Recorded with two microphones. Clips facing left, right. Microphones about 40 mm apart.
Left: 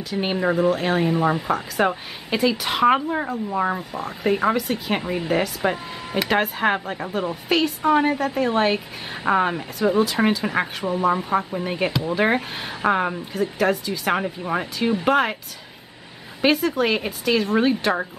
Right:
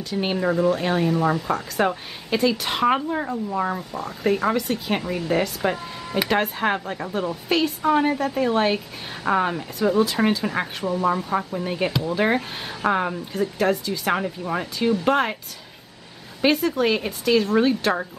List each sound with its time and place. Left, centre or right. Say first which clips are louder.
0.0 s a woman's voice: left 1 dB; centre
1.0 s speech: even; left
1.5 s a woman's voice: left 1 dB; centre
5.0 s speech: left 1 dB; left
5.3 s a woman's voice: even; centre
16.3 s a woman's voice: left 1 dB; centre